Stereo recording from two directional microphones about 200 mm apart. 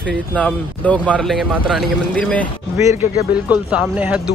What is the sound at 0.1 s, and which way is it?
Speech, 5° left (ahead or behind).